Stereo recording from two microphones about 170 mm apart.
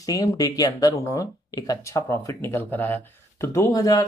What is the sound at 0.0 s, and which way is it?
Speech, 20° left (ahead or behind).